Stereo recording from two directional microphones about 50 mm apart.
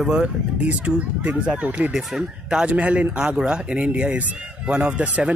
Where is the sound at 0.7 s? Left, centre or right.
Right.